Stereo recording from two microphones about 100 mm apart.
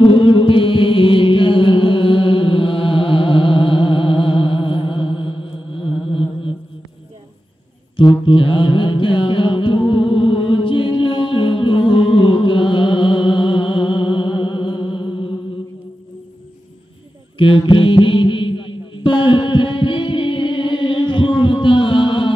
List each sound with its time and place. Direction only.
0.0 s music: 60° left (ahead or behind)
7.9 s mantra: 55° left (ahead or behind)
17.4 s mantra: 55° left (ahead or behind)